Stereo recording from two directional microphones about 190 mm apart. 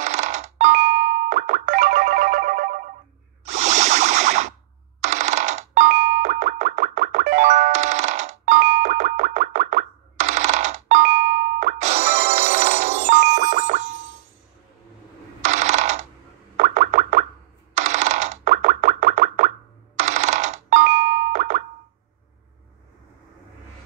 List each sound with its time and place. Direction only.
0.0 s music: 40° right (ahead or behind)
3.4 s a sound: 35° right (ahead or behind)
5.0 s coin: 35° right (ahead or behind)
5.9 s music: 50° right (ahead or behind)
7.7 s music: 40° right (ahead or behind)
15.4 s coin: 40° right (ahead or behind)
16.5 s car alarm: 45° right (ahead or behind)
17.7 s a sound: 40° right (ahead or behind)
20.0 s coin: 40° right (ahead or behind)
21.3 s plop: 45° right (ahead or behind)